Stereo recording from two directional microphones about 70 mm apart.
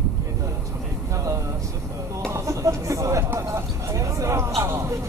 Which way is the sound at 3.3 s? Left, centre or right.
Right.